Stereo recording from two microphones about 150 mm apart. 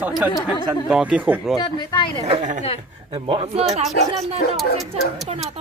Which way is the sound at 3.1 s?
40° right (ahead or behind).